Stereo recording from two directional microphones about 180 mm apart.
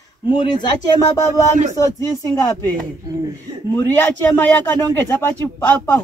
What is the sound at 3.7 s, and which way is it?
A man's voice, 10° left (ahead or behind).